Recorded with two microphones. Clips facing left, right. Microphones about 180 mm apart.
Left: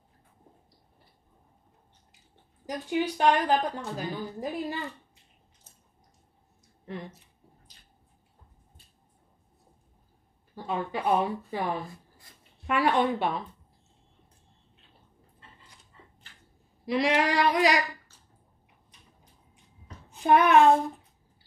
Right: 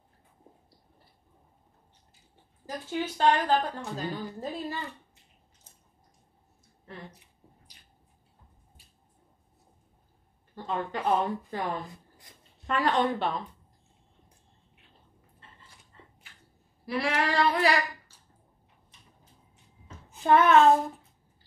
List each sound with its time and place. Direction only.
2.6 s speech: 15° left (ahead or behind)
10.5 s speech: 10° left (ahead or behind)
16.8 s speech: 20° left (ahead or behind)
20.2 s speech: 15° left (ahead or behind)